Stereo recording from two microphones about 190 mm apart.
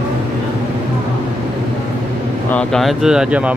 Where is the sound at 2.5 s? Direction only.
5° left (ahead or behind).